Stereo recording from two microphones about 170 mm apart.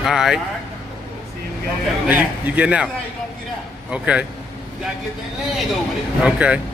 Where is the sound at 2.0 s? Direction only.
10° right (ahead or behind).